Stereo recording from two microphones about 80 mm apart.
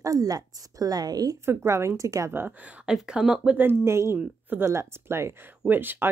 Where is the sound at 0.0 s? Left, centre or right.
Right.